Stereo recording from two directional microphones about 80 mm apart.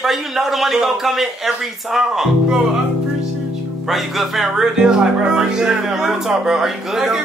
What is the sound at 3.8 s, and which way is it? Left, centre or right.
Speech, centre.